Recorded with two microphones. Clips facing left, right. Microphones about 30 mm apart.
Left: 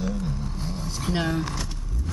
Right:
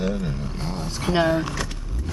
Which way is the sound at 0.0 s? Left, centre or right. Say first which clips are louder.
Right 4 dB; right.